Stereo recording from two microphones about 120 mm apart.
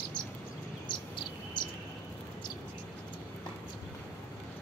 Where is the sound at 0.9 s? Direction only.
40° left (ahead or behind).